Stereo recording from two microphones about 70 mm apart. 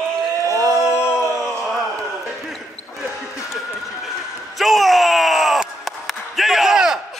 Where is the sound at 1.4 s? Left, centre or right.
Centre.